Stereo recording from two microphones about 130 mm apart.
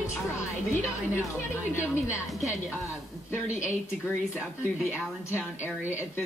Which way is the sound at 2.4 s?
25° left (ahead or behind).